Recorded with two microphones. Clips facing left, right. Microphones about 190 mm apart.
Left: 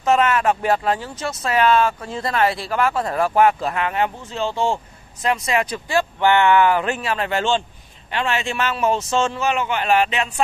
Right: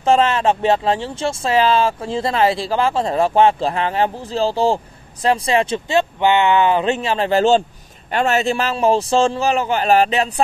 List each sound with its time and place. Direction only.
0.0 s a man's voice: 30° right (ahead or behind)